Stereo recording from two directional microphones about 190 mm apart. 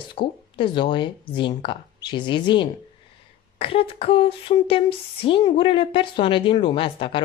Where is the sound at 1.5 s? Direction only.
25° left (ahead or behind).